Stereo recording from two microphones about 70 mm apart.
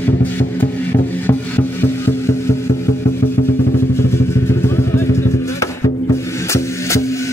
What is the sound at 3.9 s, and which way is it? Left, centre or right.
Vehicle, left.